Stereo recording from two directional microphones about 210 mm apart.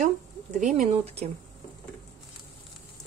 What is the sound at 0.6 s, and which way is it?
Speech, 35° right (ahead or behind).